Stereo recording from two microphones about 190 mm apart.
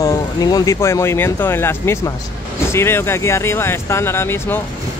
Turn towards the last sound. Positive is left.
turn(degrees=10)  # may be behind; listen again after turning